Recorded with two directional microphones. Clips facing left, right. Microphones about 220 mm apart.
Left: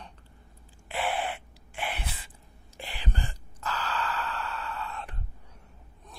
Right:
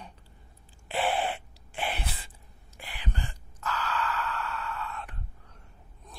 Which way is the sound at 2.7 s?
30° left (ahead or behind).